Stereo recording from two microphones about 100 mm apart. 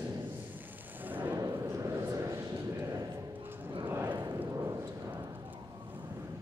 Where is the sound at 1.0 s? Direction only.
15° right (ahead or behind).